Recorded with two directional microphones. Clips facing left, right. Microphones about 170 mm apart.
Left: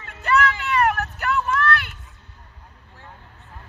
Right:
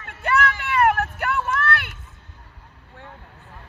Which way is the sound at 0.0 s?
55° right (ahead or behind).